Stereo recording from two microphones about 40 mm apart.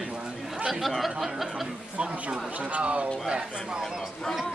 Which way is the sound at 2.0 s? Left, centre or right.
Right.